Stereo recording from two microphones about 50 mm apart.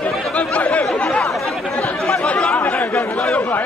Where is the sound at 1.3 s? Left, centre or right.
Centre.